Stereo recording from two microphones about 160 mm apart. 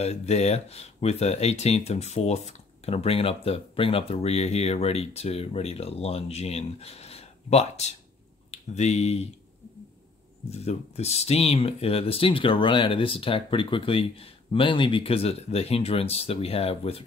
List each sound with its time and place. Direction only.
0.0 s speech: 45° left (ahead or behind)
10.5 s speech: 40° left (ahead or behind)